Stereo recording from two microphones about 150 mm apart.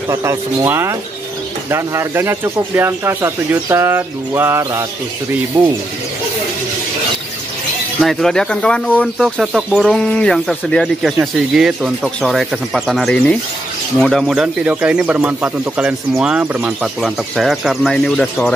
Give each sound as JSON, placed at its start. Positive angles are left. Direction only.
{"t": 0.1, "sound": "speech", "side_deg": -20}
{"t": 5.5, "sound": "speech", "side_deg": -35}
{"t": 8.0, "sound": "speech", "side_deg": 0}